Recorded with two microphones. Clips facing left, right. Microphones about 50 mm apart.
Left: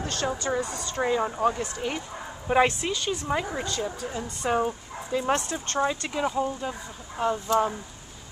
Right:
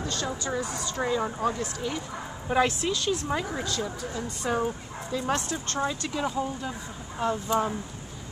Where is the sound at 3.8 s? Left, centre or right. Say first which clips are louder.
Left 1 dB; left.